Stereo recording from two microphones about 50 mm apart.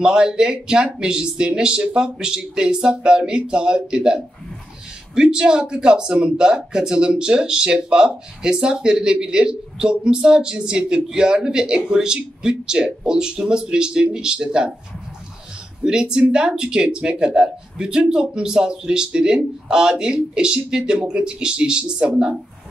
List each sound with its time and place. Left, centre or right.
0.0 s speech: centre
15.8 s speech: centre